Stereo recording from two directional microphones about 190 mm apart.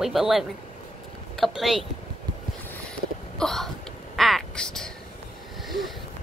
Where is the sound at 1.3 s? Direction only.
Centre (ahead or behind).